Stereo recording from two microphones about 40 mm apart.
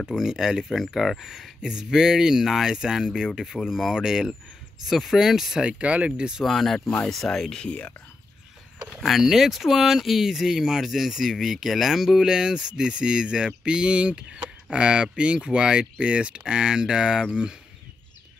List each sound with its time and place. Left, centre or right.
0.0 s speech: centre
0.7 s speech: centre
3.5 s speech: centre
3.9 s speech: centre
5.7 s speech: right
6.4 s speech: centre
7.6 s speech: left
9.0 s speech: centre